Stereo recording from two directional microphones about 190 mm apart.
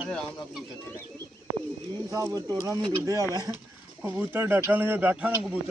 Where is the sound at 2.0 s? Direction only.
20° right (ahead or behind).